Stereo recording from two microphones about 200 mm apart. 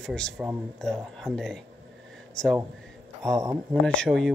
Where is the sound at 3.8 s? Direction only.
5° left (ahead or behind).